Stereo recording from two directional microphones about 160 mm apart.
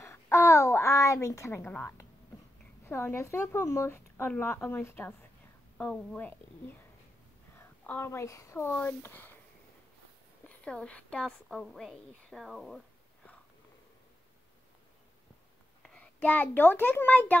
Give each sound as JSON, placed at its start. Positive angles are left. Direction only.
{"t": 0.0, "sound": "a sound", "side_deg": 15}
{"t": 2.8, "sound": "speech", "side_deg": 15}
{"t": 7.5, "sound": "speech", "side_deg": 10}
{"t": 10.6, "sound": "a woman's voice", "side_deg": 5}
{"t": 15.8, "sound": "a child's voice", "side_deg": 5}